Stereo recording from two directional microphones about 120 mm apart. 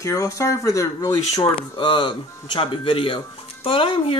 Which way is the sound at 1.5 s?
45° left (ahead or behind).